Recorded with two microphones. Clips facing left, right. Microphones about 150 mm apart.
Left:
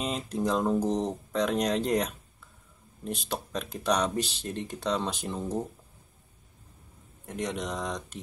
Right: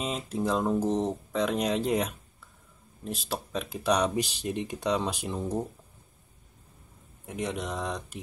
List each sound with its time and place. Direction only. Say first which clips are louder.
0.0 s speech: even; 5° right (ahead or behind)
7.2 s speech: even; 5° right (ahead or behind)